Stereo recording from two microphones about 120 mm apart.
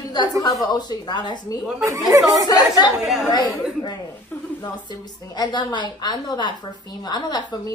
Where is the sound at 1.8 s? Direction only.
30° right (ahead or behind).